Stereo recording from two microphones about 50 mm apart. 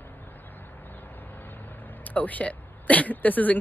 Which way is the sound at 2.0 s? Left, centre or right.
Left.